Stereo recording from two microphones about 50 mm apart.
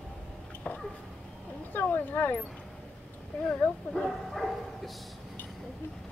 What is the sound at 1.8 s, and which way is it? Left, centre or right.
Speech, left.